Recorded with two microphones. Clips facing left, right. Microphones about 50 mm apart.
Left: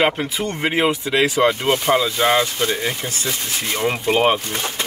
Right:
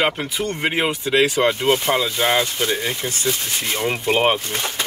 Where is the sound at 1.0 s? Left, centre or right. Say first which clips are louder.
Right 3 dB; left.